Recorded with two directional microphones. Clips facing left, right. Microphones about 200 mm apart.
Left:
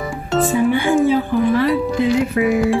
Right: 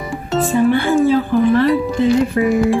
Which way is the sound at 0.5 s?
10° left (ahead or behind).